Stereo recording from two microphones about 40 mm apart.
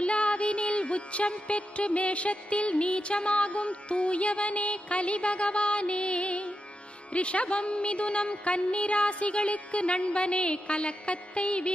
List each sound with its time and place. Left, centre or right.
0.0 s music: left
7.1 s speech: left